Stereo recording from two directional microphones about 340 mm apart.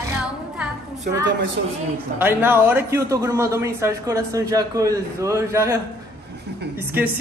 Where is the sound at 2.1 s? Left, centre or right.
Centre.